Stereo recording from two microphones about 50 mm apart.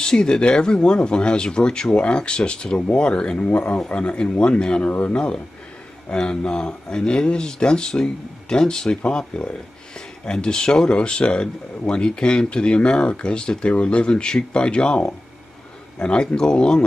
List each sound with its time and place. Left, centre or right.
0.0 s speech: centre
4.8 s speech: left
5.1 s speech: centre